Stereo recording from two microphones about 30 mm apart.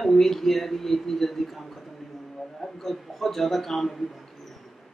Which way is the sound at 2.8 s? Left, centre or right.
Centre.